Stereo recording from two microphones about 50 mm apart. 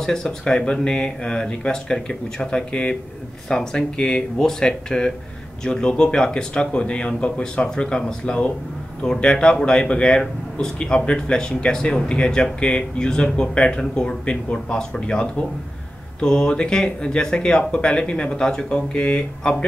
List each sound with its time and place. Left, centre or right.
0.0 s speech: centre